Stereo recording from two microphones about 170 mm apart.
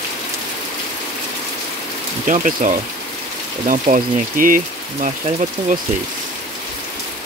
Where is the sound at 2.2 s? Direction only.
50° right (ahead or behind).